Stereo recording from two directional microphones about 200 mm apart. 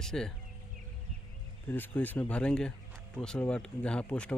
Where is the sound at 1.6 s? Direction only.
10° left (ahead or behind).